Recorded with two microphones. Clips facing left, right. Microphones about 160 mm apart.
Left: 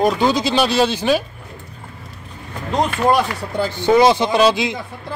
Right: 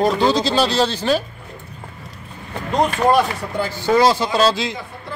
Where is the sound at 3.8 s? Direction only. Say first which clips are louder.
Left 3 dB; 20° left (ahead or behind).